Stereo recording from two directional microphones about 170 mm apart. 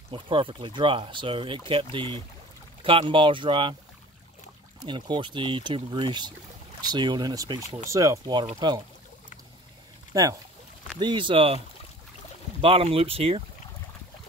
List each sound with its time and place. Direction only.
0.1 s speech: 30° right (ahead or behind)
4.8 s speech: 25° right (ahead or behind)
10.1 s speech: 20° right (ahead or behind)
12.6 s speech: 35° right (ahead or behind)